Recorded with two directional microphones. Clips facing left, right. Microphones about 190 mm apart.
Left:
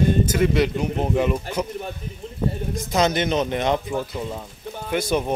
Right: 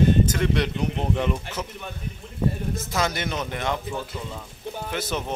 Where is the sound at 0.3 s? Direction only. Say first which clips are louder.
Left 5 dB; 5° left (ahead or behind).